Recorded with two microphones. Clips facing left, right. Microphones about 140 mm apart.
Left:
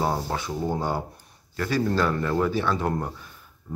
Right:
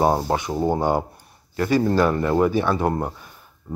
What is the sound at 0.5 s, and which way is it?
Speech, 45° right (ahead or behind).